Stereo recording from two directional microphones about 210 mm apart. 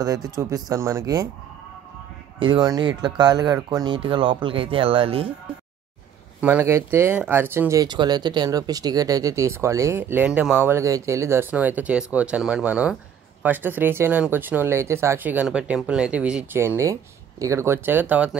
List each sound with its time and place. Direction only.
0.0 s speech: 15° right (ahead or behind)
2.3 s speech: 25° right (ahead or behind)
6.4 s speech: 10° right (ahead or behind)